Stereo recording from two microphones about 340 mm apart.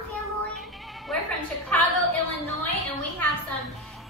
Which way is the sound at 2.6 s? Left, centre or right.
Centre.